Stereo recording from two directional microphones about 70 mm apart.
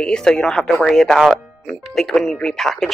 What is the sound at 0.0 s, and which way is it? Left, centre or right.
Speech, centre.